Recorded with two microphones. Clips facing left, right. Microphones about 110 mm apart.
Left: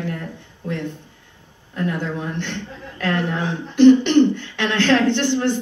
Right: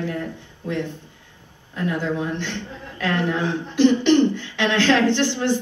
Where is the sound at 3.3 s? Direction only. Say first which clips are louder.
Right 1 dB; 50° left (ahead or behind).